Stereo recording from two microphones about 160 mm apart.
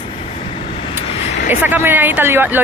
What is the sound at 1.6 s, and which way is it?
Speech, 10° right (ahead or behind).